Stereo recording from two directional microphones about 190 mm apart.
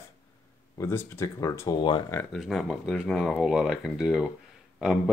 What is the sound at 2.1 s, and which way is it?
Speech, 10° left (ahead or behind).